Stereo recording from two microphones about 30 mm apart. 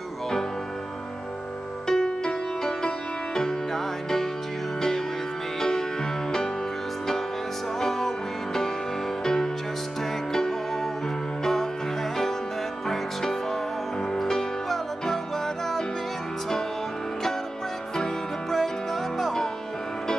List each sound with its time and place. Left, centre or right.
1.9 s music: centre
5.6 s music: centre
7.8 s music: centre
9.2 s music: centre
18.5 s music: centre